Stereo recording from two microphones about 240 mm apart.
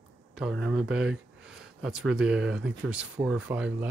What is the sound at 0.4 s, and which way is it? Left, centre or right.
Speech, centre.